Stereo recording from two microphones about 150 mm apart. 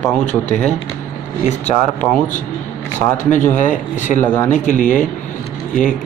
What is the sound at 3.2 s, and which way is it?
Speech, 55° left (ahead or behind).